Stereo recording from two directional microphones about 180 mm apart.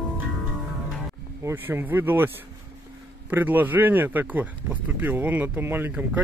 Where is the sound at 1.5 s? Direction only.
10° right (ahead or behind).